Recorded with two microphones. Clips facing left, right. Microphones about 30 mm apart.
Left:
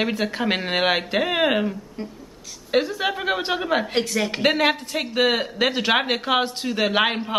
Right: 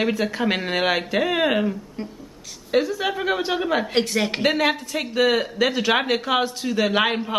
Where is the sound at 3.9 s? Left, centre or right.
Centre.